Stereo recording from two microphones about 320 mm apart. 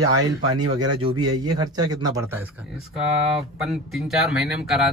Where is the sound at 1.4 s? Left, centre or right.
Centre.